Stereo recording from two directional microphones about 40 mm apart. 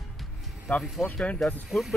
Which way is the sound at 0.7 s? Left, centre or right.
Left.